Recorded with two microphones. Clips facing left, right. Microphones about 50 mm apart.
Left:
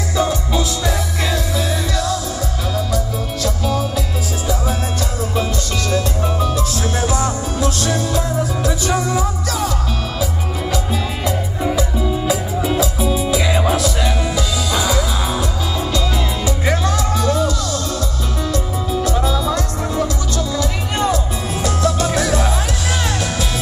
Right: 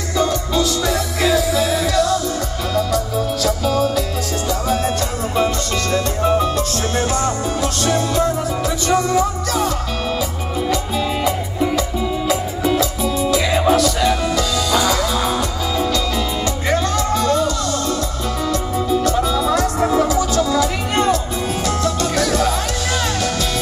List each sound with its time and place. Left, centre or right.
0.2 s music: centre
3.4 s music: centre
5.3 s music: right
6.2 s music: right
8.6 s music: centre
13.1 s music: centre
16.6 s music: centre
19.0 s music: centre
20.5 s music: centre